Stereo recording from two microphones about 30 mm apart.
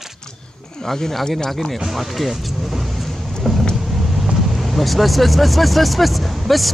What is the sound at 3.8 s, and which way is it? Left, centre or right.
Vehicle, centre.